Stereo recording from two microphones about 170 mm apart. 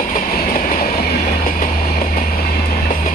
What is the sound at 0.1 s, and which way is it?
Train, 50° left (ahead or behind).